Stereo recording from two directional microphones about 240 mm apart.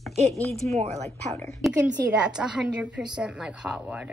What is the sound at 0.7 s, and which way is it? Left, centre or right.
Speech, right.